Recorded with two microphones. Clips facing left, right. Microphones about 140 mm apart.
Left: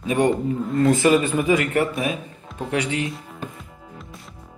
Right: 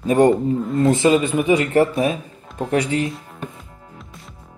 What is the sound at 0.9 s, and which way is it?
Speech, 20° right (ahead or behind).